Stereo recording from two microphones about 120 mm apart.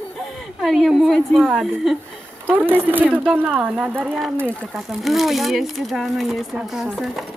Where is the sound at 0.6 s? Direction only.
Centre (ahead or behind).